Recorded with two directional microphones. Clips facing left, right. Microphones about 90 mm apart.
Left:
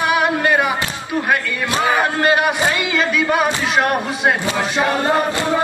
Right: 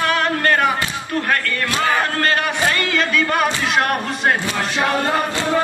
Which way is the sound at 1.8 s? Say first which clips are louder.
Left 3 dB; 15° left (ahead or behind).